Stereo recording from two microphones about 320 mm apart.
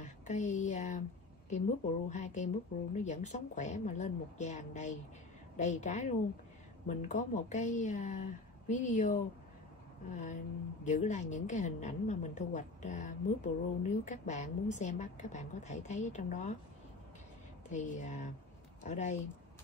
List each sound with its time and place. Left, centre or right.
0.0 s speech: left
2.0 s a woman's voice: left
17.6 s a woman's voice: left